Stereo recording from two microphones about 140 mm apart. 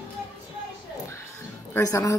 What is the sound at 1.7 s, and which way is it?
Speech, 20° left (ahead or behind).